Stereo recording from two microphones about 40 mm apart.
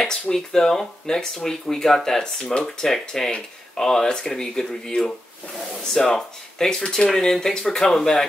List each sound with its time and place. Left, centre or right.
0.0 s speech: centre